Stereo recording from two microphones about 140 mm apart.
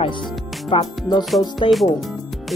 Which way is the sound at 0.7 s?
30° left (ahead or behind).